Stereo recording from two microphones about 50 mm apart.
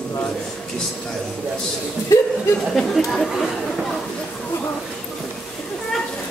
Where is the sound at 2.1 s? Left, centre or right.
Left.